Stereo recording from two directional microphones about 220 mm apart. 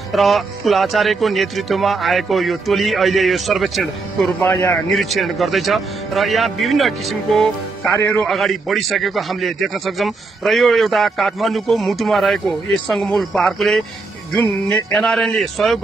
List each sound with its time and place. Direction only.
0.1 s a man's voice: centre (ahead or behind)
4.4 s a man's voice: 10° left (ahead or behind)
7.9 s a man's voice: 15° left (ahead or behind)
8.3 s a man's voice: centre (ahead or behind)